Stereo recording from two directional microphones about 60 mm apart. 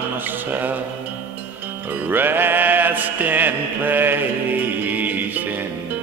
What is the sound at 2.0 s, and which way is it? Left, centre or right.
Music, right.